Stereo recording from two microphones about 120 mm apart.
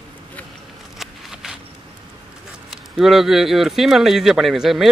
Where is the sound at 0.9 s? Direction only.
5° right (ahead or behind).